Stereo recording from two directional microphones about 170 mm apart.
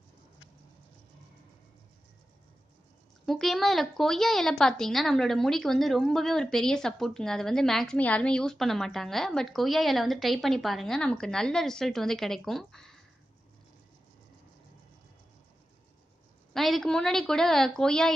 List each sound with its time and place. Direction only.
3.3 s a woman's voice: centre (ahead or behind)
16.5 s a woman's voice: centre (ahead or behind)